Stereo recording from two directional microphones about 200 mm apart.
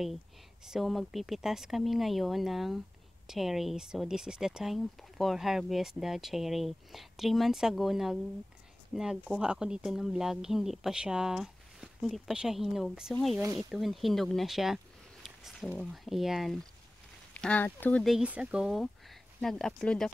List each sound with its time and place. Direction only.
0.7 s speech: centre (ahead or behind)
13.4 s speech: 15° right (ahead or behind)
13.7 s speech: centre (ahead or behind)
15.2 s a sound: centre (ahead or behind)
15.8 s speech: centre (ahead or behind)